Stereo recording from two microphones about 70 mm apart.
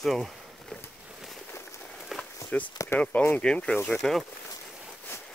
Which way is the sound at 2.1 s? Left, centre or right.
Centre.